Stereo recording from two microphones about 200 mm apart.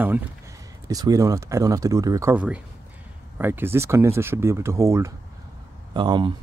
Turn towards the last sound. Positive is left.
turn(degrees=-25)  # may be behind; listen again after turning